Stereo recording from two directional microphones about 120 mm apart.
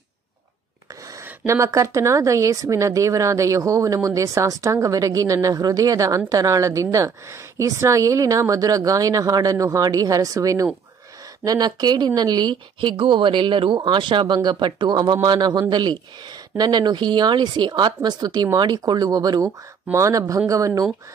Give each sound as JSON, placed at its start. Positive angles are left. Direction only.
{"t": 1.4, "sound": "speech", "side_deg": -25}